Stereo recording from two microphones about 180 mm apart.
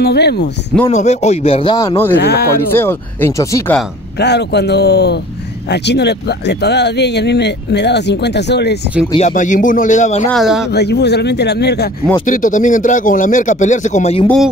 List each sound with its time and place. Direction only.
0.0 s speech: 65° left (ahead or behind)
0.9 s speech: 40° left (ahead or behind); by 2.1 s 15° left (ahead or behind)
2.2 s speech: 60° left (ahead or behind)
2.7 s speech: 10° left (ahead or behind)
4.2 s speech: 70° left (ahead or behind)
9.3 s speech: 45° left (ahead or behind)
10.2 s speech: centre (ahead or behind)
10.7 s speech: 65° left (ahead or behind)
12.3 s speech: 45° left (ahead or behind)